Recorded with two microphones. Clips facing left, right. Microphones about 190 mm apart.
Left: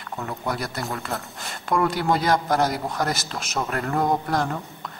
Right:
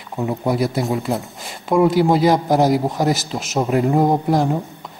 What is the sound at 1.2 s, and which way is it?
Speech, centre (ahead or behind).